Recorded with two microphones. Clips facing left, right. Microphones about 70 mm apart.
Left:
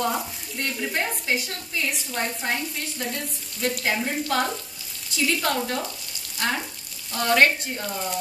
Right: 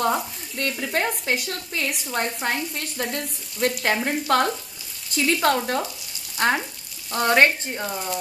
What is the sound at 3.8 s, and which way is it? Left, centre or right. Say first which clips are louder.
Frying: right 2 dB; right.